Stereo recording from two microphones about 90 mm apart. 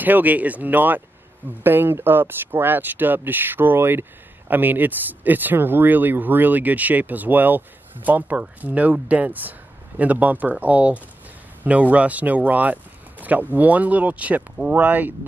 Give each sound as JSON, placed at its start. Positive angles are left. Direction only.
{"t": 0.0, "sound": "speech", "side_deg": -20}